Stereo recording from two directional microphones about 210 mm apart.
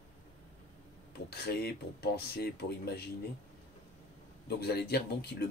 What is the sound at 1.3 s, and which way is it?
Speech, 50° left (ahead or behind).